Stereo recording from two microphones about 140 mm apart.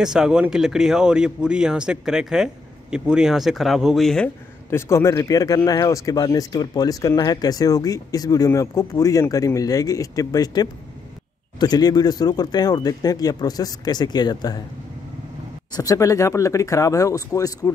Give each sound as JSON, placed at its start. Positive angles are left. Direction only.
{"t": 0.0, "sound": "speech", "side_deg": -5}
{"t": 4.6, "sound": "speech", "side_deg": 20}
{"t": 15.7, "sound": "speech", "side_deg": 25}